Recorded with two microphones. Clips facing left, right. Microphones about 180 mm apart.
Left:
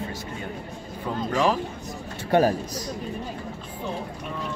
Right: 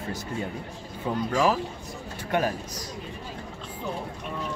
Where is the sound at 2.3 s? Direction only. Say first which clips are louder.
Left 6 dB; 35° left (ahead or behind).